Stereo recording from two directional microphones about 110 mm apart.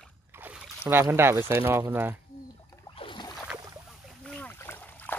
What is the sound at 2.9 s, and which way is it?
Boat, 50° left (ahead or behind).